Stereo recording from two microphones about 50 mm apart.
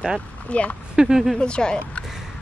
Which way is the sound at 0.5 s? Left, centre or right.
Left.